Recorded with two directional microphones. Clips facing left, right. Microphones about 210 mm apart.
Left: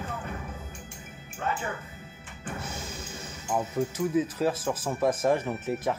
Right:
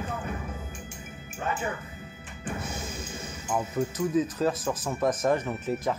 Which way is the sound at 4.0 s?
5° left (ahead or behind).